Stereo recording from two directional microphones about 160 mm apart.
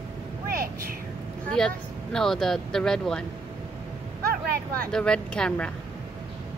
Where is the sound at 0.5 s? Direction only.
70° right (ahead or behind).